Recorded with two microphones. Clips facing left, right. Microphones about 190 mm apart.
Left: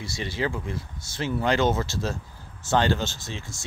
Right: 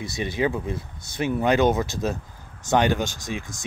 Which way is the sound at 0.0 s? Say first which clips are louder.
Right 4 dB; 20° right (ahead or behind).